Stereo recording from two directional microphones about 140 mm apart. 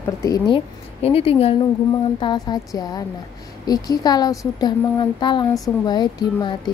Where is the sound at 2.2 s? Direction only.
30° left (ahead or behind).